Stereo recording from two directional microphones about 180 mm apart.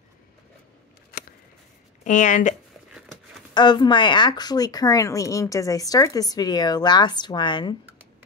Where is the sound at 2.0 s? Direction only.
45° left (ahead or behind).